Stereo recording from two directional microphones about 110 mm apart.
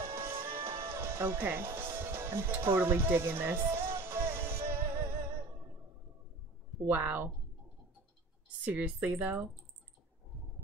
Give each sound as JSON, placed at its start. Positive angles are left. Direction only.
{"t": 0.0, "sound": "music", "side_deg": -25}
{"t": 6.9, "sound": "speech", "side_deg": -15}
{"t": 8.6, "sound": "speech", "side_deg": -15}